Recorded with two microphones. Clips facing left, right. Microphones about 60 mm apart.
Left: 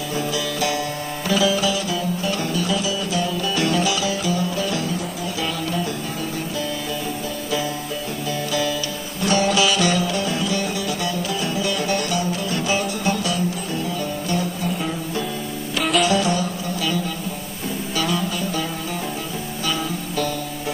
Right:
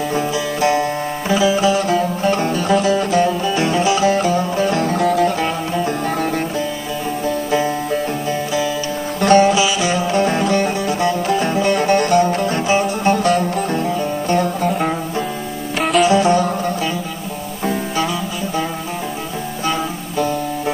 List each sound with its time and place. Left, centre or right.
0.1 s music: right
3.5 s music: right
4.9 s music: right
7.5 s music: right
9.2 s music: right
9.5 s music: centre
10.1 s music: right
16.0 s music: right